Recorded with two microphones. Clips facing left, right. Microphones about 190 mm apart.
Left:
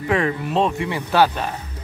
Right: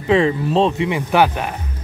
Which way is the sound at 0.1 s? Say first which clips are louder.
Right 5 dB; 25° right (ahead or behind).